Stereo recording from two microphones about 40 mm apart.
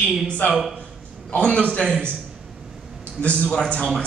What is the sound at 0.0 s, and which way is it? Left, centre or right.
A man's voice, left.